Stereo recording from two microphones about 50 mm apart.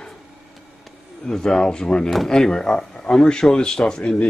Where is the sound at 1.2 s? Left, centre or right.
Centre.